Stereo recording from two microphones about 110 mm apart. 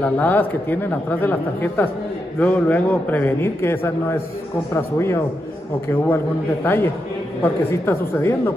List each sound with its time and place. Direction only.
0.0 s a man's voice: 15° left (ahead or behind)